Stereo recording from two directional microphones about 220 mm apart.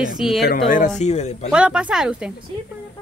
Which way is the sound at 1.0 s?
30° left (ahead or behind).